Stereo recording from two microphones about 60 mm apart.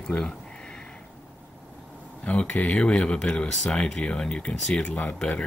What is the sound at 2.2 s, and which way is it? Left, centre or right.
Speech, left.